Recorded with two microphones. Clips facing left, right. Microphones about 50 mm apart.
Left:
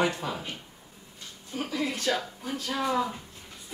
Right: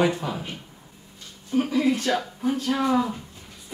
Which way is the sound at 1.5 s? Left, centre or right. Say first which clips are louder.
Right 9 dB; centre.